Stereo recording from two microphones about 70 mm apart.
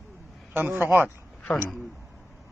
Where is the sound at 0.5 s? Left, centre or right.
Right.